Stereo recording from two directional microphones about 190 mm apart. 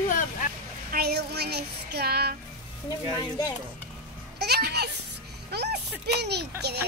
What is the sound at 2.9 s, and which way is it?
Speech, 20° left (ahead or behind).